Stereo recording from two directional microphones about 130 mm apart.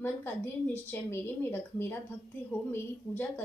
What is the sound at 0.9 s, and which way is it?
A woman's voice, 15° left (ahead or behind).